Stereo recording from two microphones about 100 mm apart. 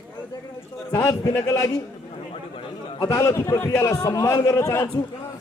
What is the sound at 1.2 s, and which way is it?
Speech, 30° left (ahead or behind).